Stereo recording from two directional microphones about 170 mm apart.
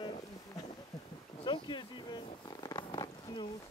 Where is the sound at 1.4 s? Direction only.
25° left (ahead or behind).